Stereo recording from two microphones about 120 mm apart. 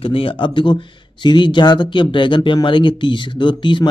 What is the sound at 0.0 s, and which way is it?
A man's voice, 50° left (ahead or behind).